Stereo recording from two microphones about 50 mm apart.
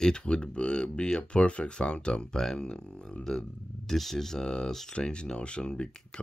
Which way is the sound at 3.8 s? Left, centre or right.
Centre.